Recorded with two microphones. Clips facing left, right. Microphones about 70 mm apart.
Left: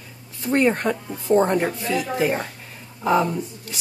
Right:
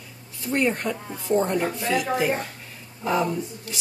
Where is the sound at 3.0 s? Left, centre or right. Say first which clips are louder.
Left 4 dB; left.